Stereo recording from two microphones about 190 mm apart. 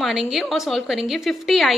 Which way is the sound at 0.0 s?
Centre (ahead or behind).